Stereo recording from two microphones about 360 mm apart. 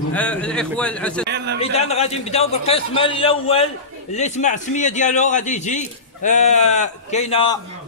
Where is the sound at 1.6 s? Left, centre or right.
Centre.